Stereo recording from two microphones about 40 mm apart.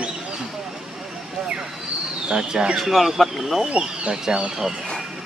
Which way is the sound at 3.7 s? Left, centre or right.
Right.